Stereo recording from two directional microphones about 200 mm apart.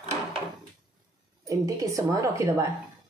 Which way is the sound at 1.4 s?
15° right (ahead or behind).